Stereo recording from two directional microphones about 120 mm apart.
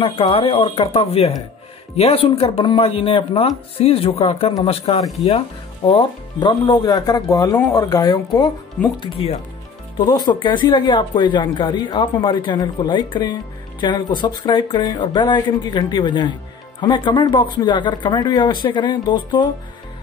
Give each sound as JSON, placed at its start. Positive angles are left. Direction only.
{"t": 0.0, "sound": "speech", "side_deg": 45}
{"t": 5.9, "sound": "speech", "side_deg": 40}
{"t": 9.9, "sound": "speech", "side_deg": 35}